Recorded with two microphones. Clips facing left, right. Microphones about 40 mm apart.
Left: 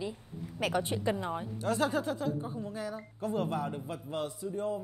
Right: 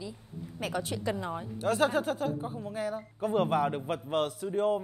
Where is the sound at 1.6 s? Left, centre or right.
Centre.